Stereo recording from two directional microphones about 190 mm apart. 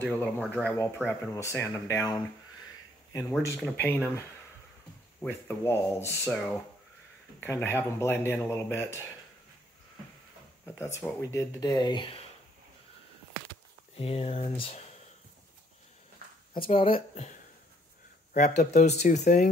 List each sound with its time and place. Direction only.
0.0 s speech: 10° left (ahead or behind)
5.2 s speech: 10° left (ahead or behind)
10.6 s speech: 15° left (ahead or behind)
13.9 s speech: 30° left (ahead or behind)
16.5 s speech: 30° left (ahead or behind)